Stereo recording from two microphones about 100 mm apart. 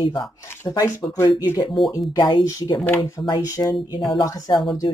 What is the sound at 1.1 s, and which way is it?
Speech, 35° left (ahead or behind).